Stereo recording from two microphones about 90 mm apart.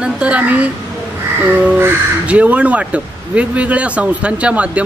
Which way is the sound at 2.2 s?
15° right (ahead or behind).